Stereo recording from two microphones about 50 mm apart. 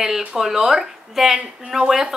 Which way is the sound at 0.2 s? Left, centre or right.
Centre.